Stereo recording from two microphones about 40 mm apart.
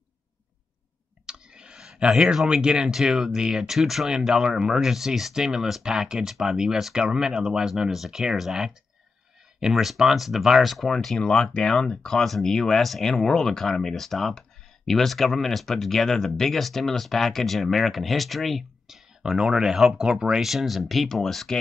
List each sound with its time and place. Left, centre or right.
1.2 s clicking: right
2.4 s speech: right
3.7 s speech: centre
11.1 s speech: left
12.2 s speech: centre
18.9 s a sound: centre
19.4 s speech: centre
19.7 s speech: centre
20.0 s speech: centre
20.4 s speech: centre